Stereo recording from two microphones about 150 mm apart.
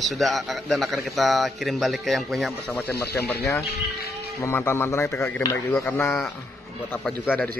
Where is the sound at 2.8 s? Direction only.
90° left.